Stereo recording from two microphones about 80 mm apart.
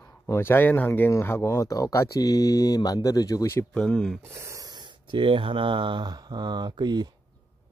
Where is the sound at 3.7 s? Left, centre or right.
Centre.